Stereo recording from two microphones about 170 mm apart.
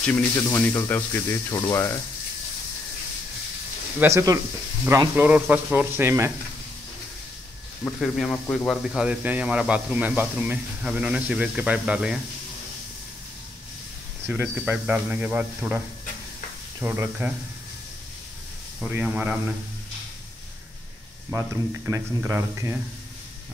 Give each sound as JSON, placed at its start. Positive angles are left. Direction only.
{"t": 0.0, "sound": "speech", "side_deg": 15}
{"t": 4.0, "sound": "speech", "side_deg": -20}
{"t": 8.0, "sound": "speech", "side_deg": 0}
{"t": 14.2, "sound": "speech", "side_deg": -10}
{"t": 16.8, "sound": "speech", "side_deg": -10}
{"t": 18.8, "sound": "speech", "side_deg": -10}
{"t": 21.3, "sound": "speech", "side_deg": -15}